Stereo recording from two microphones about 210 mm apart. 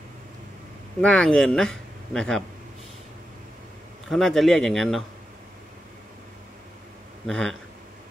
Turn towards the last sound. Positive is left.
turn(degrees=5)  # may be behind; listen again after turning